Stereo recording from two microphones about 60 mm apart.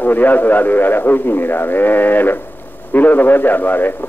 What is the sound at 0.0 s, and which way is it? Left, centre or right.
A man's voice, left.